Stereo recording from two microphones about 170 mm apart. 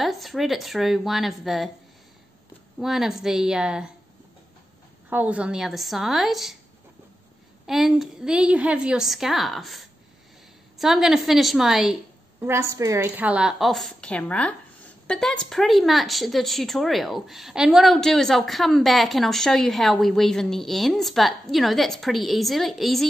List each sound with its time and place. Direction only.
0.0 s a woman's voice: centre (ahead or behind)
2.8 s a woman's voice: centre (ahead or behind)
5.1 s a woman's voice: 10° right (ahead or behind)
7.6 s a woman's voice: centre (ahead or behind)
12.4 s a woman's voice: 15° right (ahead or behind); by 23.0 s centre (ahead or behind)